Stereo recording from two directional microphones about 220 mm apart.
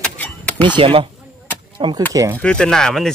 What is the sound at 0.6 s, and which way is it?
Speech, 20° right (ahead or behind).